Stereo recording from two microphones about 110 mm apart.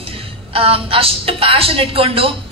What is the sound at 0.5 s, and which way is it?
A woman's voice, 60° right (ahead or behind).